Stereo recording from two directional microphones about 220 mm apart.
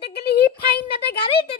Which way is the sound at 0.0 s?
45° left (ahead or behind).